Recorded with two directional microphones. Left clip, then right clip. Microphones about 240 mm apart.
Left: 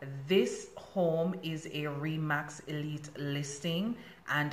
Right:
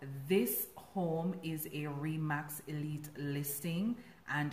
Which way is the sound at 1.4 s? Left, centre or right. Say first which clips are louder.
Left 4 dB; centre.